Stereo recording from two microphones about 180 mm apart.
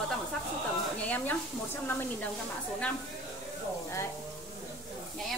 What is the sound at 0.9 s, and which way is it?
Speech, 10° left (ahead or behind).